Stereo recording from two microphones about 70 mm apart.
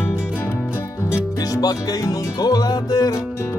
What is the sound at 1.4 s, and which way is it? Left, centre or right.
Music, left.